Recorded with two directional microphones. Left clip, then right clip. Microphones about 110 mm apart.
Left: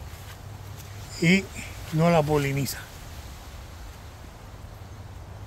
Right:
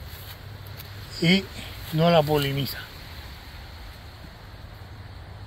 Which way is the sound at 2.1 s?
30° left (ahead or behind).